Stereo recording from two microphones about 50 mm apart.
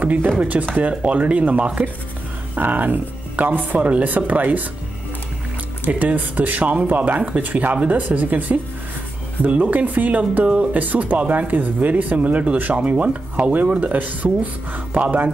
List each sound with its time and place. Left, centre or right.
0.0 s speech: right
5.9 s speech: right